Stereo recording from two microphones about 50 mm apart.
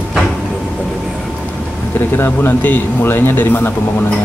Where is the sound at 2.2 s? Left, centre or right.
Left.